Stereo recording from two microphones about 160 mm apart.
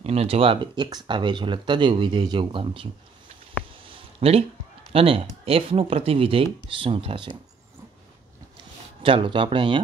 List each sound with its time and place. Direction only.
0.0 s speech: 40° right (ahead or behind)
3.8 s a sound: 40° right (ahead or behind)
4.9 s speech: 35° right (ahead or behind)
9.0 s speech: 30° right (ahead or behind)